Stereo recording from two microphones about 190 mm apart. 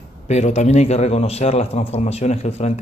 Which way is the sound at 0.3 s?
35° left (ahead or behind).